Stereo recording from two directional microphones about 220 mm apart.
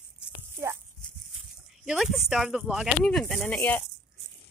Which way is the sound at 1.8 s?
Centre (ahead or behind).